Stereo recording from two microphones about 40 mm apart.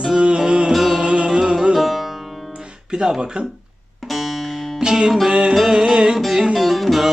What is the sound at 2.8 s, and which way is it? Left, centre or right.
Music, centre.